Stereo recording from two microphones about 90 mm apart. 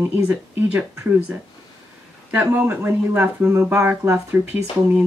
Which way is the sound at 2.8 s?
25° right (ahead or behind).